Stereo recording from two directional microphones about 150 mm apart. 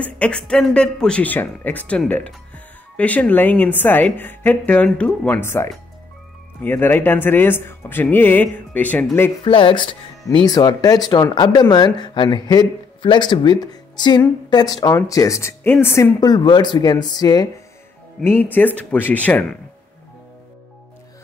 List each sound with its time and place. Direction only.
0.0 s speech: 5° left (ahead or behind)
9.4 s a woman's voice: 35° left (ahead or behind); by 16.1 s 15° left (ahead or behind)
16.2 s speech: 25° left (ahead or behind)
18.2 s speech: 15° left (ahead or behind)